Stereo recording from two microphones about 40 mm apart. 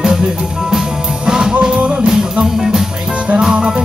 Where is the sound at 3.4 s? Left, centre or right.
Centre.